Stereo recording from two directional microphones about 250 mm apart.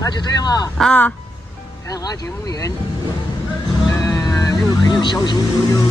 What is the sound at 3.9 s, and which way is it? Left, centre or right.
Music, centre.